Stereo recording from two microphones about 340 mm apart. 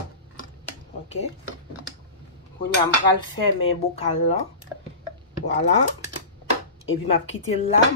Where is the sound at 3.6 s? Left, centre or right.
Centre.